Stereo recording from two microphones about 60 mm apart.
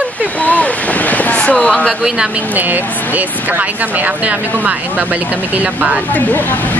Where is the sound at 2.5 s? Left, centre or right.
Right.